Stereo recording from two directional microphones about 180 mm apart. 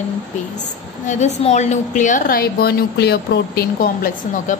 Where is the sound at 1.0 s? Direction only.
40° left (ahead or behind).